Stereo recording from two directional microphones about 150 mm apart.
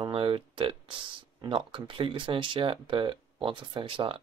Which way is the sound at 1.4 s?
35° right (ahead or behind).